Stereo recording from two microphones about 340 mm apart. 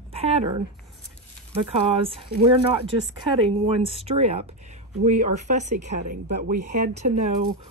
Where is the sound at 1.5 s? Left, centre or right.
Centre.